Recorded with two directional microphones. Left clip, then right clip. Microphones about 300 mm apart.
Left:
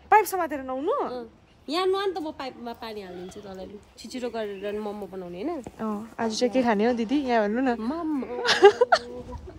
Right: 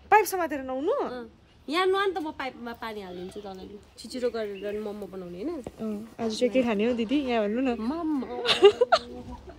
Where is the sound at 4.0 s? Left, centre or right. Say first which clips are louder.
Right 2 dB; left.